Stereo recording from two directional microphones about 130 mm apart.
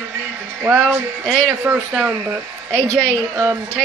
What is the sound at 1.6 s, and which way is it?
A woman's voice, 10° right (ahead or behind).